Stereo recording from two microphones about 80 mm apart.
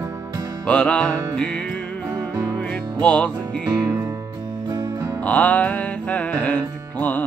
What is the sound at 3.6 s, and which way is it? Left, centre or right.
Music, right.